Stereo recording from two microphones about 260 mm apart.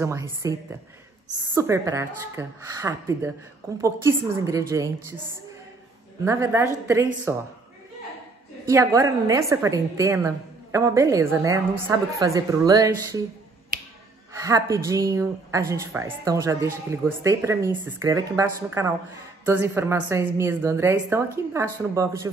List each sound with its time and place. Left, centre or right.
0.0 s a woman's voice: centre
6.2 s a woman's voice: centre
8.6 s a woman's voice: centre
14.4 s a woman's voice: centre